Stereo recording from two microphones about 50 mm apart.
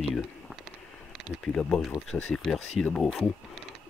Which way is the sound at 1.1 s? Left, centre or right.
Centre.